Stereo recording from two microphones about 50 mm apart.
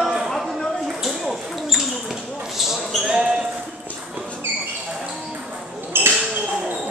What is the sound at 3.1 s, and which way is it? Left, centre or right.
Basketball bounce, centre.